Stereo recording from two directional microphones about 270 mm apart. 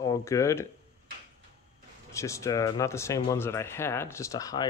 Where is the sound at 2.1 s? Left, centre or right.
Centre.